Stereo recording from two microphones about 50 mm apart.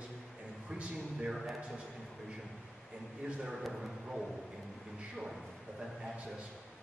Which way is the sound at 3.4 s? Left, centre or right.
Centre.